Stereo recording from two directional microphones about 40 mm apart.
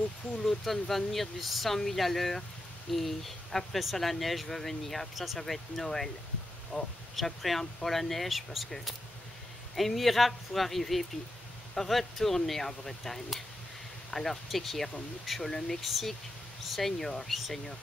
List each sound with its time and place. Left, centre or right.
0.4 s speech: centre
6.7 s speech: right
7.2 s speech: centre
9.8 s speech: centre